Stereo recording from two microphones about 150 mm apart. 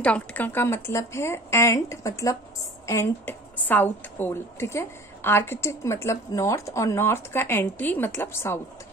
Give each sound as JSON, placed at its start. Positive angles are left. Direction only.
{"t": 0.0, "sound": "a woman's voice", "side_deg": 10}